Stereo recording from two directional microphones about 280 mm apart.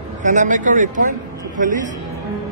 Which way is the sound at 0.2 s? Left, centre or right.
Right.